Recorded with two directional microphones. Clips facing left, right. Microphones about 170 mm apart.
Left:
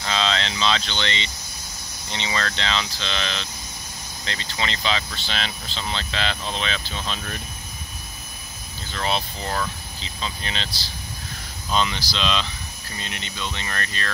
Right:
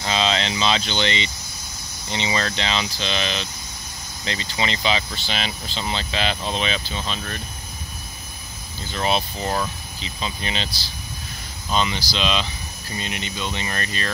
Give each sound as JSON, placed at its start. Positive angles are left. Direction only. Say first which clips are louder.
{"t": 0.0, "sound": "speech", "louder": "right 2 dB", "side_deg": -15}
{"t": 8.9, "sound": "speech", "louder": "right 3 dB", "side_deg": -15}
{"t": 11.7, "sound": "speech", "louder": "right 1 dB", "side_deg": -5}